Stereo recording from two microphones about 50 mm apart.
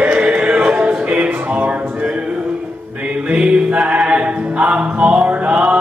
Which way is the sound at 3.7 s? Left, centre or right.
Right.